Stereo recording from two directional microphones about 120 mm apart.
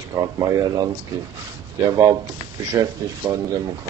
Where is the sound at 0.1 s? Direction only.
30° right (ahead or behind).